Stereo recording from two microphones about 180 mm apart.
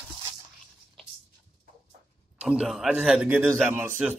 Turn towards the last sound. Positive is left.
turn(degrees=-10)  # may be behind; listen again after turning